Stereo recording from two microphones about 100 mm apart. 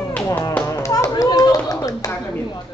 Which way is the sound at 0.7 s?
35° left (ahead or behind).